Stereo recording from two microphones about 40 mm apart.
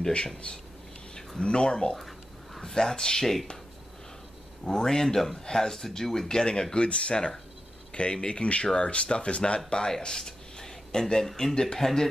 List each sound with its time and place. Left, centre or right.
1.4 s speech: left
2.0 s a sound: centre
2.6 s speech: centre
4.6 s speech: centre
9.7 s speech: centre